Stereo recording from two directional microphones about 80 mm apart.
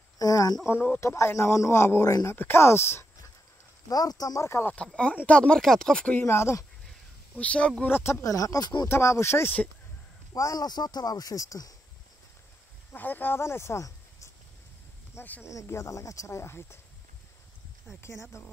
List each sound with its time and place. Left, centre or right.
0.2 s a sound: left
0.7 s speech: left
3.9 s speech: left
4.5 s speech: left
4.7 s speech: centre
6.1 s speech: left
7.3 s speech: centre
7.9 s speech: left
10.3 s speech: left
12.9 s speech: left
15.1 s speech: left
15.5 s speech: left
18.3 s speech: left